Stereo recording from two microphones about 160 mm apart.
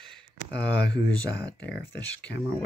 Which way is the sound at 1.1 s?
5° left (ahead or behind).